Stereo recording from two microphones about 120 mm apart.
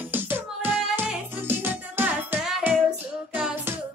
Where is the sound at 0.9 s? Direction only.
15° right (ahead or behind).